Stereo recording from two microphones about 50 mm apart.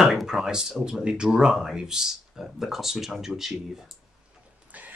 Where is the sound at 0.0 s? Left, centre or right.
Centre.